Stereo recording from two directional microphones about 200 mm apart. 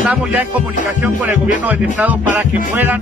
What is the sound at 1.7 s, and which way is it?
Speech, 10° right (ahead or behind).